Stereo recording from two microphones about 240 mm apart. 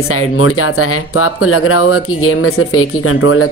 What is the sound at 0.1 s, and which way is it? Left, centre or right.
Speech, left.